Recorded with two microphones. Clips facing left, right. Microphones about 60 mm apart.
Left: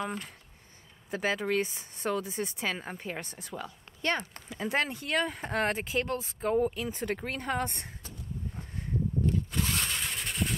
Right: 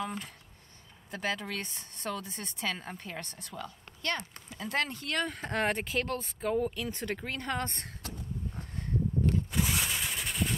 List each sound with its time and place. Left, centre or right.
0.0 s speech: centre
1.1 s speech: centre
9.5 s a sound: centre